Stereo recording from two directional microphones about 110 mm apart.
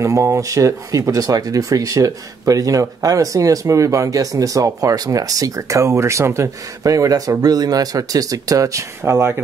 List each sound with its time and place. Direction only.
0.0 s speech: 30° right (ahead or behind)